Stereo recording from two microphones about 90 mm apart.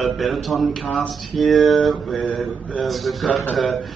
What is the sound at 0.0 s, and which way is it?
A man's voice, centre (ahead or behind).